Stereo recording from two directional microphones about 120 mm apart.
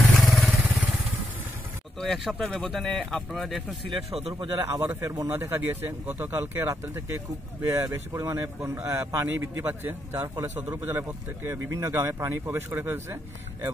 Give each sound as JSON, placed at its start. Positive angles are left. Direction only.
{"t": 0.0, "sound": "vehicle", "side_deg": 0}
{"t": 2.0, "sound": "speech", "side_deg": 0}
{"t": 3.9, "sound": "a man's voice", "side_deg": -55}
{"t": 4.6, "sound": "speech", "side_deg": -20}